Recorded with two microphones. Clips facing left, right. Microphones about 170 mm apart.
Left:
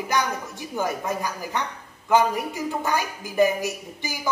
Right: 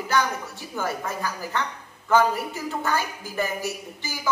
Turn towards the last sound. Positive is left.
turn(degrees=15)  # may be behind; listen again after turning